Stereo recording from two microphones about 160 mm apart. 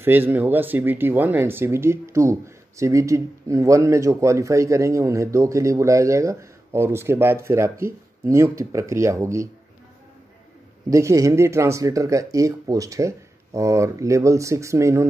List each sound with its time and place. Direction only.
0.0 s speech: 15° right (ahead or behind)
10.9 s speech: 20° right (ahead or behind)